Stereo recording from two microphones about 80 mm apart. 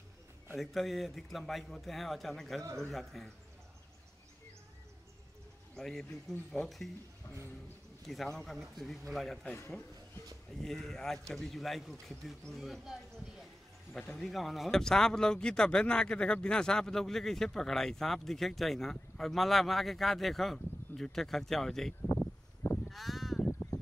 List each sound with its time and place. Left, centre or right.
0.6 s speech: centre
2.6 s a man's voice: right
2.9 s speech: centre
5.8 s speech: centre
8.1 s speech: centre
10.6 s speech: centre
13.9 s speech: centre
22.0 s a sound: left
22.8 s a sound: centre
23.7 s a sound: left